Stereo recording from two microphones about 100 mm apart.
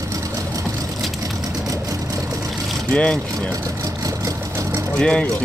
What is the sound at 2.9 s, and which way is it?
Speech, 10° left (ahead or behind).